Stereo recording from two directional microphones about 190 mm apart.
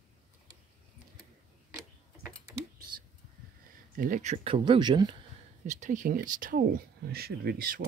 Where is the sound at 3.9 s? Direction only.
45° right (ahead or behind).